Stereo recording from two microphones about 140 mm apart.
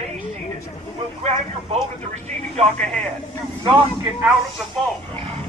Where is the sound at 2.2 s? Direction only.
55° right (ahead or behind).